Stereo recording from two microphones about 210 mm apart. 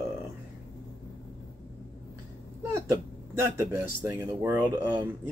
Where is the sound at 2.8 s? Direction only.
15° right (ahead or behind).